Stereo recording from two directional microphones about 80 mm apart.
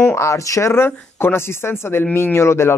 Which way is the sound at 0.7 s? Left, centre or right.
Left.